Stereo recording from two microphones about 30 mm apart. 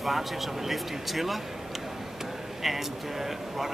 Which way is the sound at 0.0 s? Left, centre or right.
Centre.